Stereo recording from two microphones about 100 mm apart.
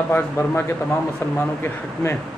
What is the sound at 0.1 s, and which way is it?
Speech, 20° left (ahead or behind).